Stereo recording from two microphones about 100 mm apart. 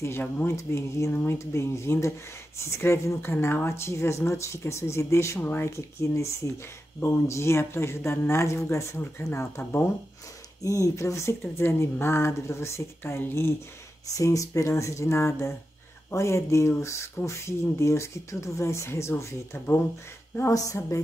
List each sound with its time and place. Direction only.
0.0 s speech: 20° left (ahead or behind)
20.4 s speech: 35° left (ahead or behind)